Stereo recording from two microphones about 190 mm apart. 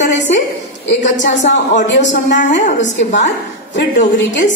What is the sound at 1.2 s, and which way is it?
Speech, 70° left (ahead or behind).